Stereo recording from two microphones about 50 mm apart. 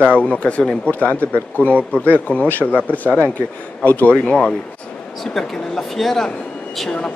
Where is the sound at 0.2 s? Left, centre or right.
Left.